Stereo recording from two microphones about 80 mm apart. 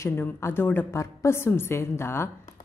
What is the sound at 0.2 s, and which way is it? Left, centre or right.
A woman's voice, left.